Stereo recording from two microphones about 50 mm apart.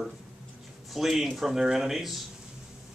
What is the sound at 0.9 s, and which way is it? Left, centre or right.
Speech, centre.